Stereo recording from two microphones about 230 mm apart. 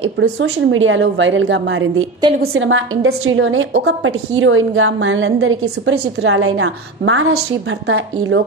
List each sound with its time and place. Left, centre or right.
0.0 s a woman's voice: right